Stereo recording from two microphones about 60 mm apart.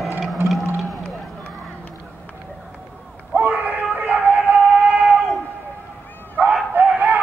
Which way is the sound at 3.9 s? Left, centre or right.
Right.